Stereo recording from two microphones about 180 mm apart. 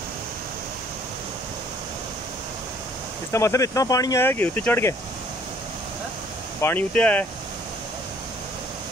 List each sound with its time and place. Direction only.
3.3 s speech: 15° left (ahead or behind)
6.6 s speech: 10° left (ahead or behind)